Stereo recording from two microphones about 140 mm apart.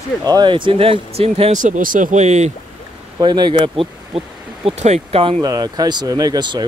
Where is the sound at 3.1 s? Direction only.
30° right (ahead or behind).